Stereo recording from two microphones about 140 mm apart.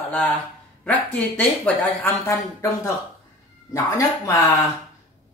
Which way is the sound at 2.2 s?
25° left (ahead or behind).